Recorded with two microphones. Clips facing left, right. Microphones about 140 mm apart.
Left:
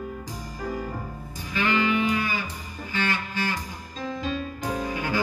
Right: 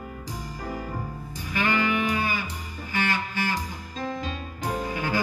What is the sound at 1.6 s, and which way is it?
Music, 45° right (ahead or behind).